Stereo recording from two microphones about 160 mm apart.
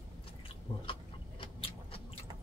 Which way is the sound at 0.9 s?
35° left (ahead or behind).